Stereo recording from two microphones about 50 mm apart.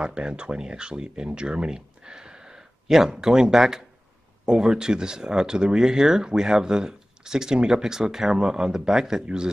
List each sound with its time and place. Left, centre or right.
0.0 s speech: centre